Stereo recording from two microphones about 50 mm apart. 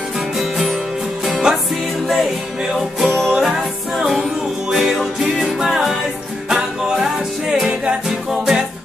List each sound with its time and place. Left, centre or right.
0.4 s music: centre
1.5 s music: centre
2.7 s music: centre
3.2 s music: centre
3.4 s music: centre